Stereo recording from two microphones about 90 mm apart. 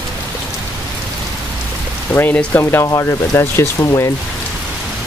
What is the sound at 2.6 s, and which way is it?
Speech, 30° left (ahead or behind).